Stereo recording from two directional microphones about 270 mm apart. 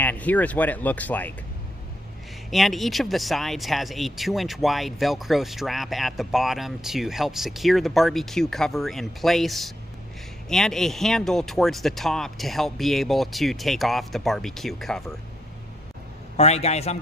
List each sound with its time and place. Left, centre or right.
0.0 s speech: centre
2.5 s speech: centre
16.3 s a man's voice: left